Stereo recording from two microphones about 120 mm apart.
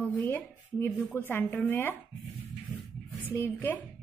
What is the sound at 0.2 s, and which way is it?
Speech, 15° left (ahead or behind).